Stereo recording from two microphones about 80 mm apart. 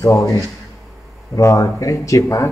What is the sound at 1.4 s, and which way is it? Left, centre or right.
A man's voice, left.